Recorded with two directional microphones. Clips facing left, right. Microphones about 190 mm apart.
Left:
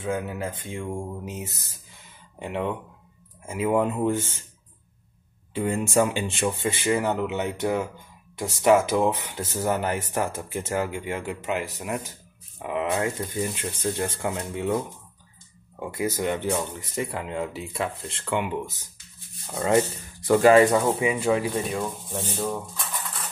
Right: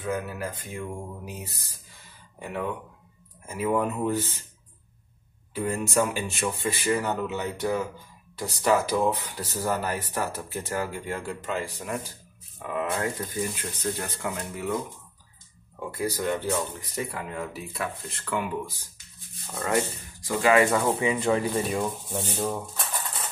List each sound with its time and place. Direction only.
0.0 s speech: 25° left (ahead or behind)
3.7 s speech: 25° left (ahead or behind)
5.5 s speech: 25° left (ahead or behind)
15.8 s speech: 25° left (ahead or behind); by 22.8 s 5° right (ahead or behind)